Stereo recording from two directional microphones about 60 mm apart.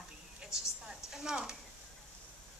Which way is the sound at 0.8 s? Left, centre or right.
Centre.